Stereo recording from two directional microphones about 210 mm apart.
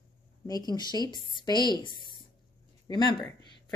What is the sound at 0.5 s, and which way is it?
A woman's voice, 20° left (ahead or behind).